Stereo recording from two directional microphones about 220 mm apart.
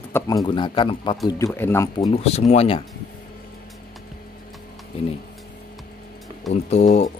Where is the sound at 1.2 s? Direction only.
10° left (ahead or behind).